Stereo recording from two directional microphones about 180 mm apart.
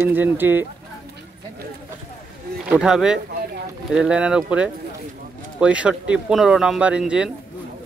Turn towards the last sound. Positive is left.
turn(degrees=-5)  # may be behind; listen again after turning